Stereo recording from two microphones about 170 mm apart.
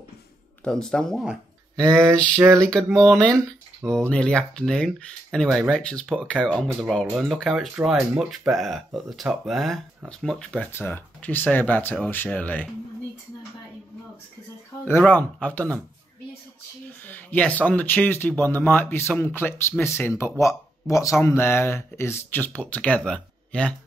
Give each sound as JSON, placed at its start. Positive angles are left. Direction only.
{"t": 0.7, "sound": "speech", "side_deg": 5}
{"t": 1.8, "sound": "mantra", "side_deg": -15}
{"t": 2.6, "sound": "speech", "side_deg": 5}
{"t": 3.3, "sound": "speech", "side_deg": -20}
{"t": 3.9, "sound": "speech", "side_deg": 5}
{"t": 14.9, "sound": "speech", "side_deg": 10}
{"t": 17.0, "sound": "speech", "side_deg": 10}